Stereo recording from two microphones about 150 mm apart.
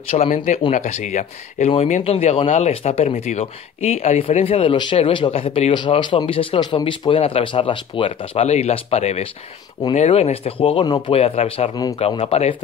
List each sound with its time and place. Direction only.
0.1 s speech: 45° left (ahead or behind)
11.7 s speech: 25° left (ahead or behind)
12.0 s speech: 40° left (ahead or behind)